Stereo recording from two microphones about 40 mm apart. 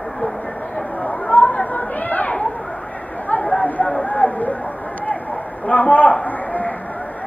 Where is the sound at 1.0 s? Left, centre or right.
Left.